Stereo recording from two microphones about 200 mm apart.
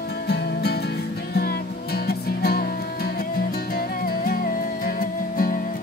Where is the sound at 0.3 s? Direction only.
55° left (ahead or behind).